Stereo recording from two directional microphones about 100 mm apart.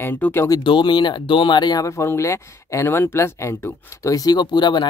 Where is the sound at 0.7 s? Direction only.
50° left (ahead or behind).